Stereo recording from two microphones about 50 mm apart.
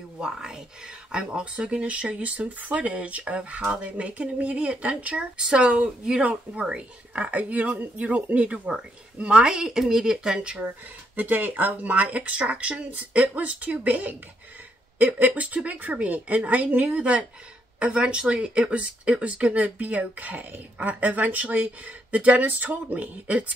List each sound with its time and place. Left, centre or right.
0.2 s speech: centre
11.1 s a woman's voice: right
15.1 s a woman's voice: right